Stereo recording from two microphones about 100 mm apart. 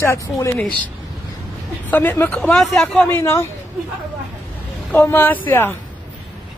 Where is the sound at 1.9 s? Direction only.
15° left (ahead or behind).